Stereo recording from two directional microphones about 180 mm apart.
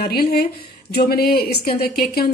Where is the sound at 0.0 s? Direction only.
60° left (ahead or behind).